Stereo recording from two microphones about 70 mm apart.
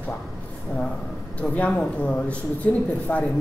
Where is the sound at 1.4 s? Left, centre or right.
Centre.